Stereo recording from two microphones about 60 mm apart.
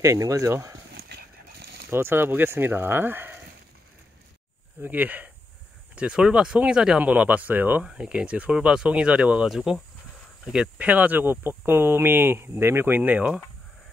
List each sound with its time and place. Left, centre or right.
0.0 s speech: right
1.9 s speech: right
4.8 s speech: right
5.9 s speech: centre
7.8 s speech: centre
9.5 s speech: centre
10.8 s speech: right